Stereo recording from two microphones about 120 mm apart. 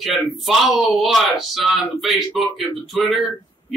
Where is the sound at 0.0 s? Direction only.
Centre (ahead or behind).